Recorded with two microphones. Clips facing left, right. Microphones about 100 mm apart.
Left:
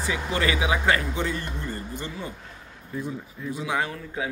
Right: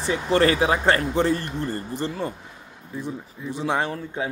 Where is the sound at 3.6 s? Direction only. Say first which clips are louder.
Right 4 dB; 35° right (ahead or behind).